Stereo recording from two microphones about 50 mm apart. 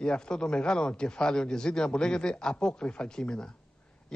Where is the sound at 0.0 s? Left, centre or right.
Centre.